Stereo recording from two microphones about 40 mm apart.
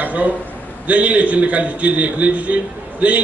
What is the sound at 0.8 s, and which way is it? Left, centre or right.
A man's voice, right.